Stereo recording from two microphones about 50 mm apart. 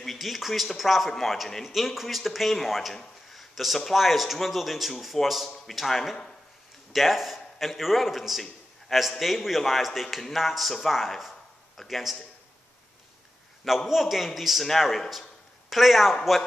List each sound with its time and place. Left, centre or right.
0.0 s a man's voice: centre
13.8 s speech: centre